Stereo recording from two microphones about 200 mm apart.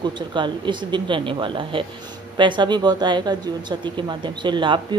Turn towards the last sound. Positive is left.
turn(degrees=-25)  # may be behind; listen again after turning